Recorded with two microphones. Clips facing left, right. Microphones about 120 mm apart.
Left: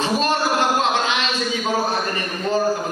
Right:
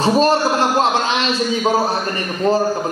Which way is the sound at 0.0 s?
35° right (ahead or behind).